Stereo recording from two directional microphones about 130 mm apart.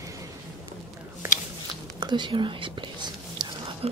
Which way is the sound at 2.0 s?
35° right (ahead or behind).